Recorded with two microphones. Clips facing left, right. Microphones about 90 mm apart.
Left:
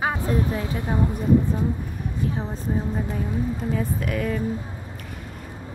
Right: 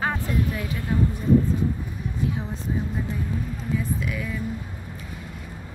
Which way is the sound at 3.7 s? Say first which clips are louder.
Left 2 dB; 50° left (ahead or behind).